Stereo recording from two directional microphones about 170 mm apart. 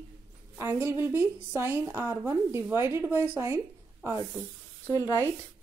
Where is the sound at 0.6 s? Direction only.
15° right (ahead or behind).